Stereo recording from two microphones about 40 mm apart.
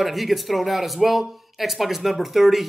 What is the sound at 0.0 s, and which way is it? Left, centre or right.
Speech, centre.